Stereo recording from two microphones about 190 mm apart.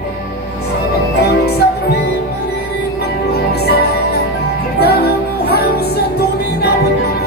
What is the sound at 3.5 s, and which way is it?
Music, 60° left (ahead or behind).